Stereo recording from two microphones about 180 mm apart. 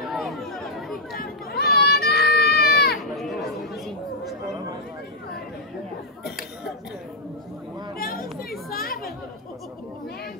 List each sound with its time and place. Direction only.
0.1 s chatter: centre (ahead or behind)
1.2 s a sound: 60° left (ahead or behind)
3.2 s chatter: centre (ahead or behind)
8.0 s chatter: 55° left (ahead or behind)